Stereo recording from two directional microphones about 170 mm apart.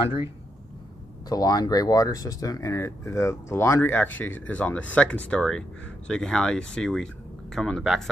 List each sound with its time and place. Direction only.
1.3 s speech: 20° left (ahead or behind); by 8.1 s centre (ahead or behind)